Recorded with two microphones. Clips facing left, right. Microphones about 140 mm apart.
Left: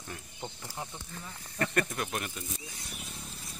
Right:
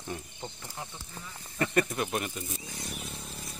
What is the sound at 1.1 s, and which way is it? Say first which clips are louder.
Speech: right 3 dB; 5° right (ahead or behind).